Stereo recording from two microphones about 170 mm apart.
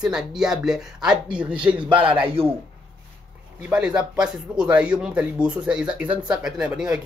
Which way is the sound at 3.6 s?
5° right (ahead or behind).